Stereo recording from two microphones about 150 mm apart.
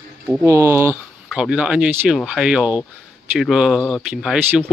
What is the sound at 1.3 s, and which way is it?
Speech, 5° right (ahead or behind).